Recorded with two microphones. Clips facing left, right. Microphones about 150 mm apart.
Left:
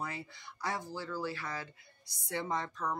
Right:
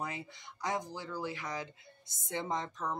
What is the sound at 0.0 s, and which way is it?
Speech, 20° right (ahead or behind).